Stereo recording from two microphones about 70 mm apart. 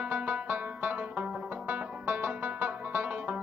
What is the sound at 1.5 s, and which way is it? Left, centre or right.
Music, centre.